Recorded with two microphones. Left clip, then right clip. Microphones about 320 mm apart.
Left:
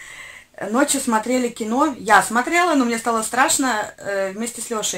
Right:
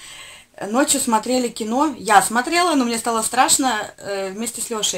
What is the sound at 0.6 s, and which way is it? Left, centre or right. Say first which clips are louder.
Speech: even; centre.